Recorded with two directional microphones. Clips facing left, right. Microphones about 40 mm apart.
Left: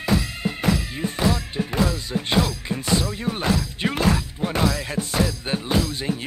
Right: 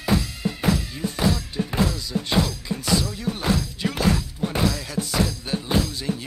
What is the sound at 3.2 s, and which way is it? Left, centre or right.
Speech, left.